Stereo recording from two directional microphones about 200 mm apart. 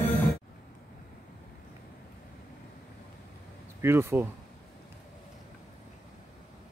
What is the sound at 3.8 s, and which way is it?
Speech, 10° right (ahead or behind).